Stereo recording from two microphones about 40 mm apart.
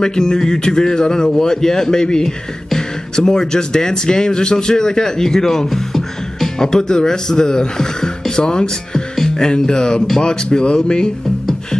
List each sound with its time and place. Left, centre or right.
0.0 s speech: centre